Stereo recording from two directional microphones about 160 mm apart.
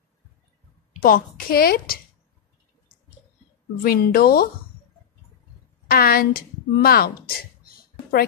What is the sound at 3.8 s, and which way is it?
Speech, 70° left (ahead or behind).